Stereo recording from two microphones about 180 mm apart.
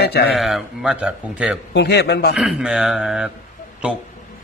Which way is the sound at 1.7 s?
65° left (ahead or behind).